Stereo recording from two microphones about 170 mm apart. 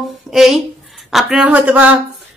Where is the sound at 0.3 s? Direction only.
Centre (ahead or behind).